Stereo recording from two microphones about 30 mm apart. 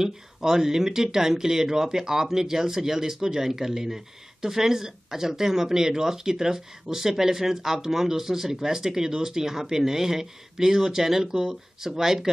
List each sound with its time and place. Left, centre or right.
0.0 s speech: centre